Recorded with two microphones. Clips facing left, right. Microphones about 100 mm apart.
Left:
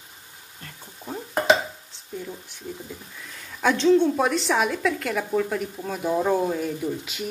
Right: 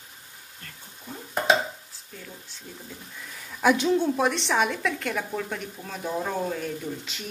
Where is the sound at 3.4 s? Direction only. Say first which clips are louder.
Left 2 dB; 5° right (ahead or behind).